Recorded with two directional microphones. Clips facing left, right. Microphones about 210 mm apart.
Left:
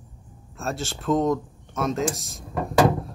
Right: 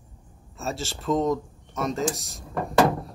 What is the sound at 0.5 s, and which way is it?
Speech, centre (ahead or behind).